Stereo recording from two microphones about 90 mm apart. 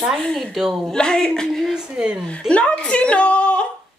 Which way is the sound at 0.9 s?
10° left (ahead or behind).